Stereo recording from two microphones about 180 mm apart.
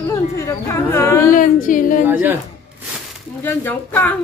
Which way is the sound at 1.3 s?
50° left (ahead or behind).